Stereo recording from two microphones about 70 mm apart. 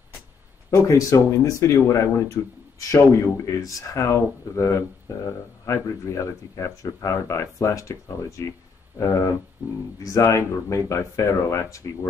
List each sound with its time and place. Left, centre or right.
0.7 s speech: left
10.3 s speech: left